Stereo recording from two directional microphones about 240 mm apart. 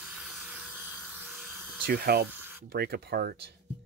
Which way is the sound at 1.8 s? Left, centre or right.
Right.